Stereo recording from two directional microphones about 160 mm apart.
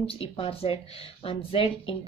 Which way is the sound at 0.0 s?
35° left (ahead or behind).